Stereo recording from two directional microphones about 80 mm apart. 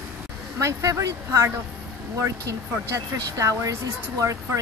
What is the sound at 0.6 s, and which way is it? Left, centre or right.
Speech, right.